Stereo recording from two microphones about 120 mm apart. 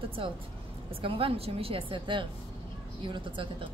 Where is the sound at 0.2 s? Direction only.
50° right (ahead or behind).